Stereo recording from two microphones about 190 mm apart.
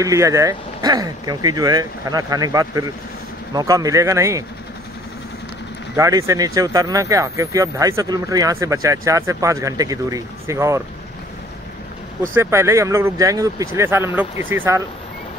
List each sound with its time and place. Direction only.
0.0 s speech: 15° right (ahead or behind)
5.9 s speech: 15° right (ahead or behind)
12.4 s speech: 15° right (ahead or behind)